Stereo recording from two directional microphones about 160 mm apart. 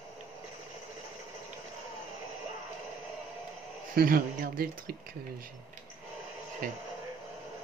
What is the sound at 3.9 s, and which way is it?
Speech, 65° right (ahead or behind).